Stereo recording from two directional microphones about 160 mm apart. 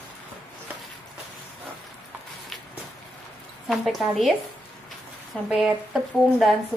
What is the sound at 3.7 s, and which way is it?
Speech, centre (ahead or behind).